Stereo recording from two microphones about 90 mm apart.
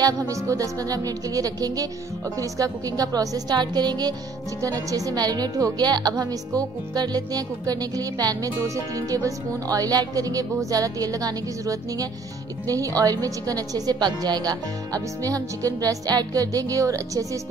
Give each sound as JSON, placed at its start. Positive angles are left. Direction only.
{"t": 0.0, "sound": "a woman's voice", "side_deg": -40}